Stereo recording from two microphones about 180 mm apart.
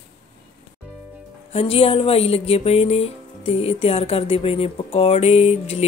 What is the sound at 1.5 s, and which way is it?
Speech, 30° left (ahead or behind).